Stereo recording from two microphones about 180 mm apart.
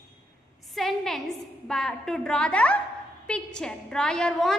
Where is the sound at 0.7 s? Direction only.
Centre (ahead or behind).